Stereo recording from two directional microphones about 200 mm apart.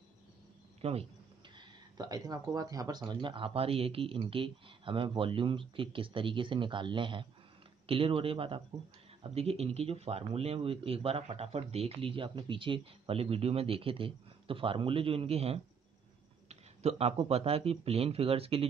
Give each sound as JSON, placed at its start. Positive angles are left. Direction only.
{"t": 0.7, "sound": "speech", "side_deg": -30}
{"t": 1.6, "sound": "speech", "side_deg": -20}